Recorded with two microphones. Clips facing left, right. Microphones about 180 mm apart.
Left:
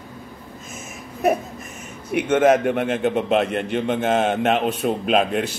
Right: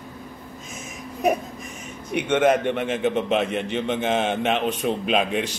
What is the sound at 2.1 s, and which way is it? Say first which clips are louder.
Speech: left 3 dB; 5° left (ahead or behind).